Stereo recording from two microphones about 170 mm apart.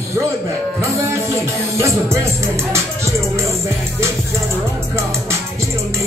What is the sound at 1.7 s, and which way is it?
Music, 15° right (ahead or behind).